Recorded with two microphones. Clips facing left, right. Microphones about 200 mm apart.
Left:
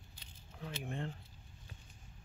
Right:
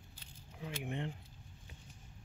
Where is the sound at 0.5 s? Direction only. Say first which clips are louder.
Right 1 dB; 10° right (ahead or behind).